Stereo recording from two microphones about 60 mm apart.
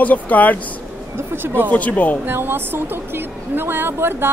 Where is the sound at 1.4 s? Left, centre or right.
Right.